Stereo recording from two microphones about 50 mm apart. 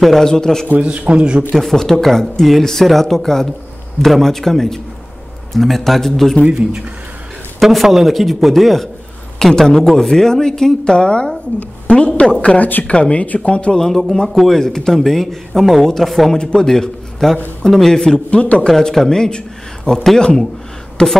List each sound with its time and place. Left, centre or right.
0.0 s speech: centre
0.7 s a man's voice: right
1.5 s speech: centre
6.4 s a man's voice: centre
7.6 s speech: centre; by 12.9 s left
12.9 s speech: left
13.7 s speech: centre
14.3 s speech: centre
14.6 s speech: centre
16.3 s a man's voice: centre
18.3 s speech: left
18.7 s speech: centre